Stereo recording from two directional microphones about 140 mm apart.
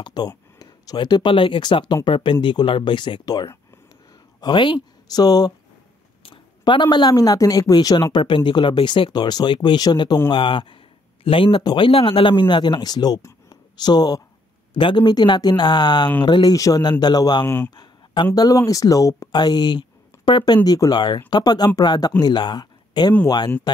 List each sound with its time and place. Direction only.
0.0 s speech: 30° left (ahead or behind)
13.2 s a sound: 30° left (ahead or behind)
14.7 s speech: 35° left (ahead or behind)